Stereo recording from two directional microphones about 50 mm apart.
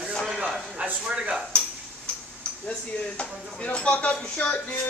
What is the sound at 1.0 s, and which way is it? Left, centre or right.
Speech, right.